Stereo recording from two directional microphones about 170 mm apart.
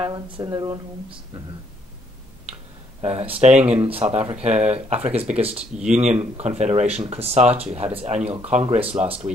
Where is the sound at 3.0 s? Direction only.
35° right (ahead or behind).